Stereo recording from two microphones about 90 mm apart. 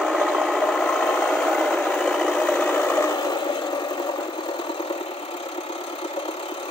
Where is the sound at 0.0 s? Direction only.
Centre (ahead or behind); by 3.0 s 20° left (ahead or behind).